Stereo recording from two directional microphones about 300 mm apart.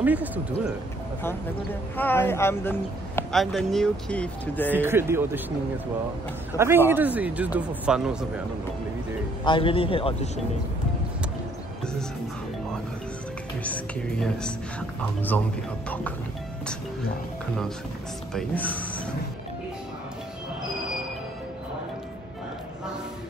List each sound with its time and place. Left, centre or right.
0.0 s a man's voice: centre
2.0 s speech: centre
4.7 s speech: centre
6.5 s a man's voice: centre
9.4 s speech: centre
13.7 s a man's voice: centre
18.3 s a man's voice: centre